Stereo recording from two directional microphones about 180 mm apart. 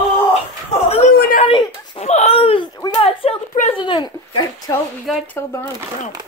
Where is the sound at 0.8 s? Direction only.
35° left (ahead or behind).